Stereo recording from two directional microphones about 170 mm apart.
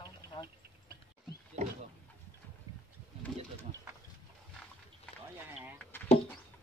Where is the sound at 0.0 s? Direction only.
30° left (ahead or behind).